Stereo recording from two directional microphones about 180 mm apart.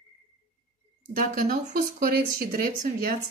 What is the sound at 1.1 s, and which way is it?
Speech, 50° right (ahead or behind).